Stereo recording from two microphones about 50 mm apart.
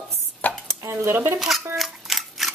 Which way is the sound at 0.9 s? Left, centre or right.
Right.